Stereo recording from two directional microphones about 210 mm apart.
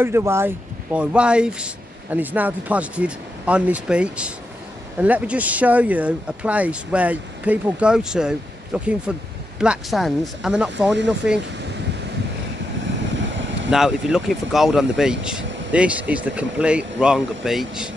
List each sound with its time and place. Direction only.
0.0 s speech: 10° right (ahead or behind)
13.2 s vehicle: 60° right (ahead or behind)
13.7 s speech: centre (ahead or behind)